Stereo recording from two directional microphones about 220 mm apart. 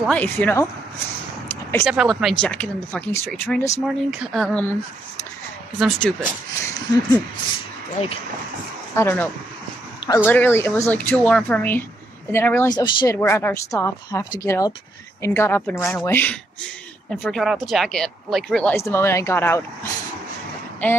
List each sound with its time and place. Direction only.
0.1 s speech: 5° left (ahead or behind)
1.5 s a sound: 10° left (ahead or behind)
1.9 s speech: centre (ahead or behind)
5.8 s speech: 5° left (ahead or behind)
8.0 s speech: 30° left (ahead or behind)
8.9 s speech: 10° left (ahead or behind)